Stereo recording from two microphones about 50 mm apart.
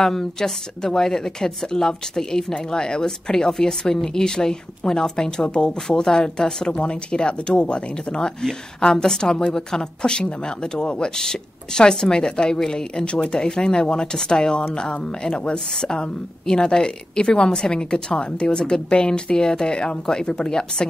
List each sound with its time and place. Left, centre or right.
0.0 s speech: centre